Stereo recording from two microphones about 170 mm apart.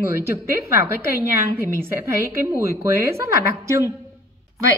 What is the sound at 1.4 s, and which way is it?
A woman's voice, 15° right (ahead or behind).